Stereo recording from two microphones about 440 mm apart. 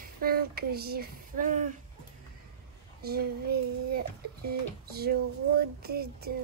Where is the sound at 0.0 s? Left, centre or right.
Centre.